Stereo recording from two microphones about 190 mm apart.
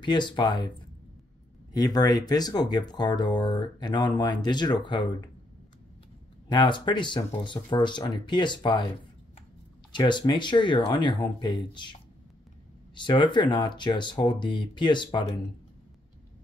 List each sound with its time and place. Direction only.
0.0 s speech: 25° left (ahead or behind)
1.7 s speech: 20° left (ahead or behind)
6.5 s speech: 25° left (ahead or behind)
9.9 s speech: 25° left (ahead or behind)